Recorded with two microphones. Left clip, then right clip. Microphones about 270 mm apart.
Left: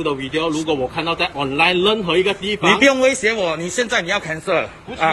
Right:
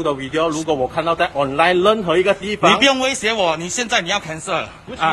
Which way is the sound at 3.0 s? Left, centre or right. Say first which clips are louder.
Left 1 dB; centre.